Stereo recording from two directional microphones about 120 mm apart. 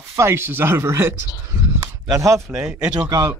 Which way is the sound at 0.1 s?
20° right (ahead or behind).